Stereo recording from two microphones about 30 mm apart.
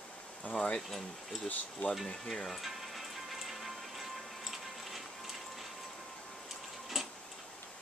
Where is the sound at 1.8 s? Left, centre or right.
Left.